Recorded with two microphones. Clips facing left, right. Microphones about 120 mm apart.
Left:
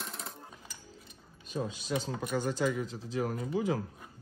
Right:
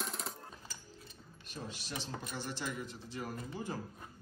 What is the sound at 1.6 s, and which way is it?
Speech, 90° left.